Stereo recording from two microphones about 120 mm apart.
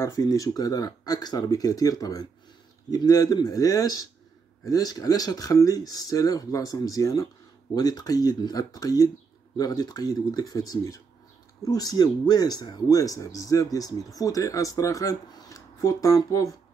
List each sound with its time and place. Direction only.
0.0 s speech: 30° left (ahead or behind)